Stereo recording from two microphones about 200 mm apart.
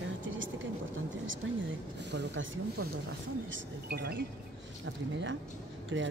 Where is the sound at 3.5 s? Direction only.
50° right (ahead or behind).